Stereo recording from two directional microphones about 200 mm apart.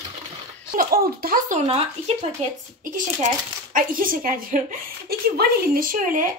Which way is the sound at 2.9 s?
40° right (ahead or behind).